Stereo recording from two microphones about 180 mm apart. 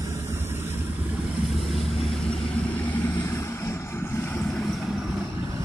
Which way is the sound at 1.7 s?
35° left (ahead or behind).